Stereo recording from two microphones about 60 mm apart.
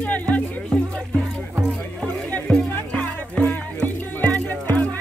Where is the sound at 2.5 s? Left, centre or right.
Centre.